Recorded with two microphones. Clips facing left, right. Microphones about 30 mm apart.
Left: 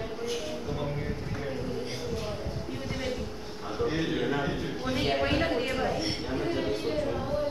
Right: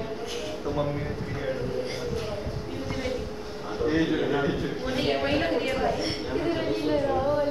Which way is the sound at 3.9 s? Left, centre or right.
Centre.